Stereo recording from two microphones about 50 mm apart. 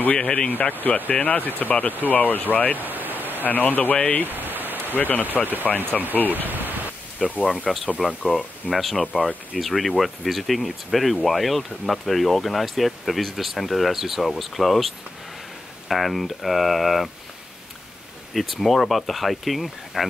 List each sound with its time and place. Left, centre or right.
0.1 s speech: centre
0.5 s speech: left
2.8 s a sound: right
3.4 s speech: left
4.3 s rain: right
4.9 s speech: left
5.7 s speech: centre
6.1 s speech: left
6.4 s speech: right
7.2 s speech: centre
7.6 s speech: centre
15.9 s speech: centre
18.3 s speech: centre